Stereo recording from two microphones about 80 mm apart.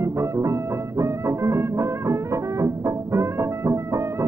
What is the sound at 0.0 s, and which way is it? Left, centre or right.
Music, right.